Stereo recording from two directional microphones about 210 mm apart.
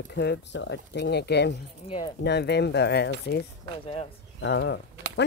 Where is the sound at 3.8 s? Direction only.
25° left (ahead or behind).